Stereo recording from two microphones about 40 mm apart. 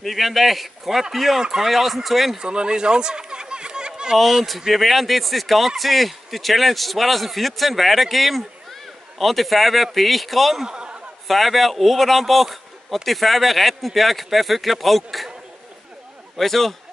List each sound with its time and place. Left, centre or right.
0.0 s speech: centre
1.4 s speech: centre
1.7 s speech: centre
2.3 s a sound: right
4.2 s speech: centre
10.6 s a man's voice: right
11.2 s speech: centre
16.3 s speech: centre